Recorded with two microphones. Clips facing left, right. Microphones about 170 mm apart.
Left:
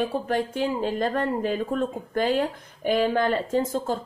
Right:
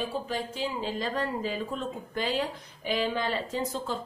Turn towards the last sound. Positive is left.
turn(degrees=50)  # may be behind; listen again after turning